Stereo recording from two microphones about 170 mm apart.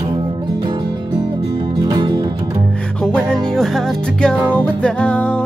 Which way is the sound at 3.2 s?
5° left (ahead or behind).